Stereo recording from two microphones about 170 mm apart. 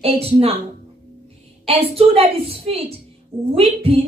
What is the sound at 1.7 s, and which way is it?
A woman's voice, 35° right (ahead or behind).